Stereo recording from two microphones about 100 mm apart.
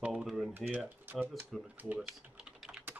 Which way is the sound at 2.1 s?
10° right (ahead or behind).